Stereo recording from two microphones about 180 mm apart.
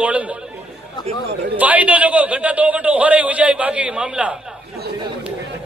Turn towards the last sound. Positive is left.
turn(degrees=-5)  # may be behind; listen again after turning